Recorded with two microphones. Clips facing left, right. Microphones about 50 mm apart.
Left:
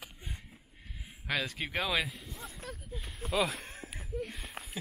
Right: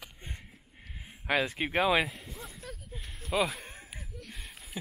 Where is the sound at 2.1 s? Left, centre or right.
Centre.